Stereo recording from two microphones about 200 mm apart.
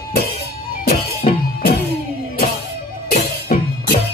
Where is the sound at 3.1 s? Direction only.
50° left (ahead or behind).